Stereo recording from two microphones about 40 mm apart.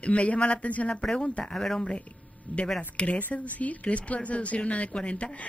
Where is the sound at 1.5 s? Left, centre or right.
Centre.